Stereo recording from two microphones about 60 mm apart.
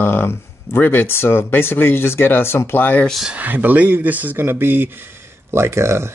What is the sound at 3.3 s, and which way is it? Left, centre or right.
Speech, right.